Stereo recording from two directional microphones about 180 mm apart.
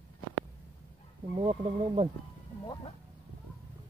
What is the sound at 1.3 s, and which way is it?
Speech, 30° right (ahead or behind).